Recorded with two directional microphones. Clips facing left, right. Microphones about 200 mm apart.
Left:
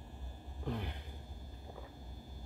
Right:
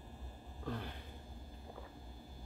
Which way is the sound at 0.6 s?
20° left (ahead or behind).